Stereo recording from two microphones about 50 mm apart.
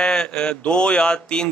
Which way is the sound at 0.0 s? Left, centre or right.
Centre.